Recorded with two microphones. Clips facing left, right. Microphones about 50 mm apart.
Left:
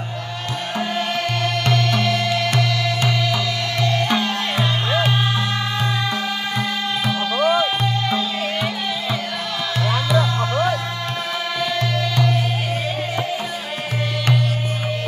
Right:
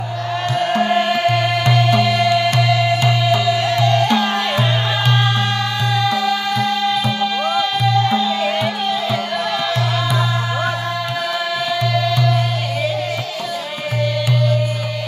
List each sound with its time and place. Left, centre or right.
0.7 s music: right
1.0 s music: centre
3.8 s music: centre
6.0 s music: centre
8.0 s music: centre